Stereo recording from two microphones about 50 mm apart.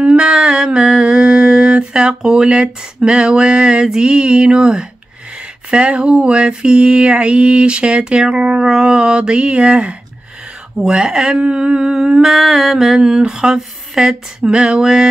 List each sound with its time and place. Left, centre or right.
0.0 s mantra: centre
10.8 s speech: centre